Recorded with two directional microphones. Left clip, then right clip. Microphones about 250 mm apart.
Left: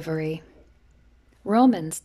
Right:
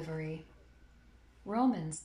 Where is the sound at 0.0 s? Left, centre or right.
Left.